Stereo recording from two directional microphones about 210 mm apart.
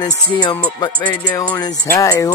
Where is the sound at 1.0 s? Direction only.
10° left (ahead or behind).